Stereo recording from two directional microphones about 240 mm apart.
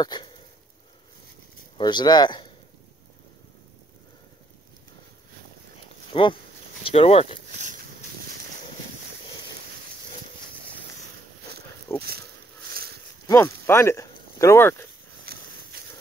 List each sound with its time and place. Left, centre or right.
0.0 s sniff: centre
1.8 s speech: centre
6.1 s speech: left
11.9 s speech: centre
12.7 s a sound: right
13.3 s speech: centre